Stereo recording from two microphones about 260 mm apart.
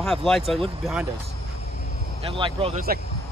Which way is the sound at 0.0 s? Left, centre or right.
Centre.